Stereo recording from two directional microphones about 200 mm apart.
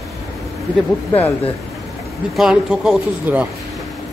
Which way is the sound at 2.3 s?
Centre (ahead or behind).